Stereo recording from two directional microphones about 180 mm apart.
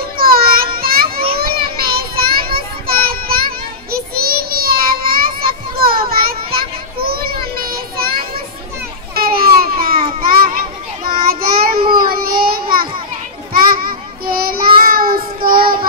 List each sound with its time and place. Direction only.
0.2 s child singing: 55° right (ahead or behind)
5.8 s children playing: 55° right (ahead or behind)
9.1 s babbling: 55° right (ahead or behind)
10.2 s child singing: 55° right (ahead or behind)